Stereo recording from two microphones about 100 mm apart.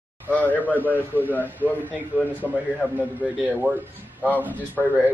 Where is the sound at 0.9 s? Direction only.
20° right (ahead or behind).